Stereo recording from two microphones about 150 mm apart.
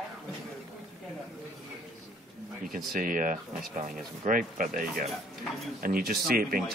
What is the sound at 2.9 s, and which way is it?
Speech, 65° right (ahead or behind).